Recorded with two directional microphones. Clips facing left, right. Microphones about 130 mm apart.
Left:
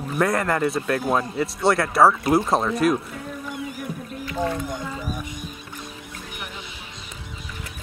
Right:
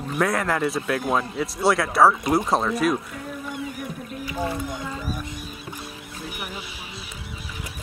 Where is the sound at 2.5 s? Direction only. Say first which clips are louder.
Left 1 dB; centre (ahead or behind).